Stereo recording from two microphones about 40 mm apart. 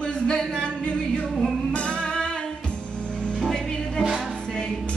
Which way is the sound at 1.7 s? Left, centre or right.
Left.